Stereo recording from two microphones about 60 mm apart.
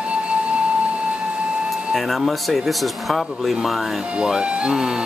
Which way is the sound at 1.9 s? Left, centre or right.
Centre.